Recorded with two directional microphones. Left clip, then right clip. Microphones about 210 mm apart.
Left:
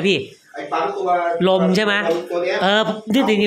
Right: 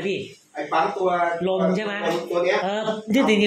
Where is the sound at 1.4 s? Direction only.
45° left (ahead or behind).